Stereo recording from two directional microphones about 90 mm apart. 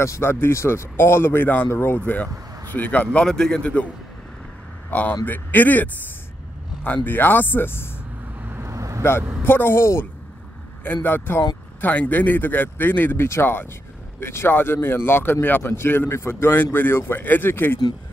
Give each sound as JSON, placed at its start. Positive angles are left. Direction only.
{"t": 0.0, "sound": "a man's voice", "side_deg": 30}
{"t": 5.2, "sound": "speech", "side_deg": 20}
{"t": 7.1, "sound": "speech", "side_deg": 20}
{"t": 8.4, "sound": "vehicle", "side_deg": -20}
{"t": 8.6, "sound": "vehicle", "side_deg": -35}
{"t": 9.4, "sound": "speech", "side_deg": 25}